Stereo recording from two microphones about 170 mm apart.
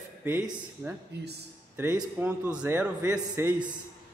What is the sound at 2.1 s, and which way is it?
Speech, 10° right (ahead or behind).